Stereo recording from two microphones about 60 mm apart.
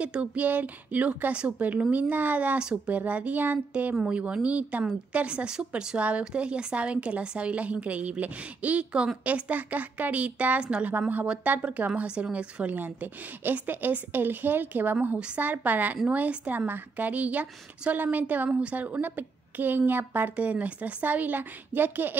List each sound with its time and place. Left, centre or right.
0.0 s a woman's voice: right
12.7 s a woman's voice: right